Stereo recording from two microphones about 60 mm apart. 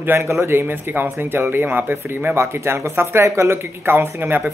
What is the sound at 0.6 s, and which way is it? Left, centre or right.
Speech, right.